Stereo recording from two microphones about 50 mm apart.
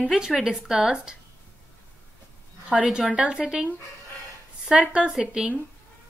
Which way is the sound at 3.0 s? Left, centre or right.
Centre.